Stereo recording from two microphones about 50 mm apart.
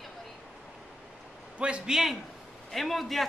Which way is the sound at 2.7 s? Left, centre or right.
Centre.